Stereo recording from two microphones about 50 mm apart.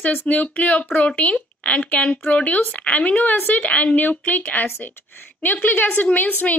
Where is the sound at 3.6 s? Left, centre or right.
Left.